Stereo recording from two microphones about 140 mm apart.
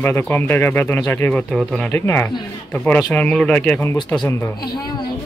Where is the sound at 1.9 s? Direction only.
15° left (ahead or behind).